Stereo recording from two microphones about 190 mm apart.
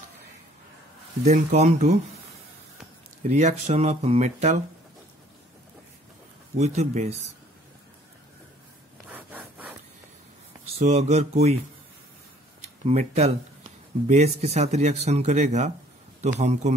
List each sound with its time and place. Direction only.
1.2 s speech: 35° right (ahead or behind)
3.3 s speech: 35° right (ahead or behind)
6.6 s speech: 35° right (ahead or behind)
9.1 s wood: 10° right (ahead or behind)
10.8 s speech: 35° right (ahead or behind)
12.8 s speech: 35° right (ahead or behind)